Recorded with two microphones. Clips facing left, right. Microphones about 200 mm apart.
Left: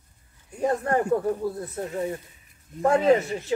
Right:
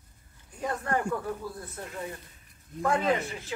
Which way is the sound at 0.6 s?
35° left (ahead or behind).